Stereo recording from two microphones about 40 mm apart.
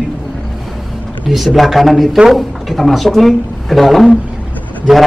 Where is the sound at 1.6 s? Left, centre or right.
Centre.